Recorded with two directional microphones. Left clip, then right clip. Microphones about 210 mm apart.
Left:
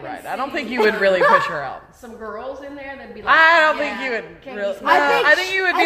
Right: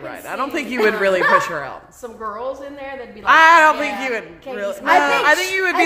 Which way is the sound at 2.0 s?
30° right (ahead or behind).